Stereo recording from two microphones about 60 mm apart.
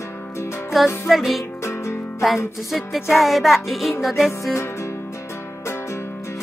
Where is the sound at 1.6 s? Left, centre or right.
Left.